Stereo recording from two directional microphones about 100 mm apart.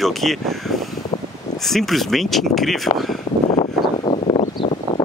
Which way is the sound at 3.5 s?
75° left (ahead or behind).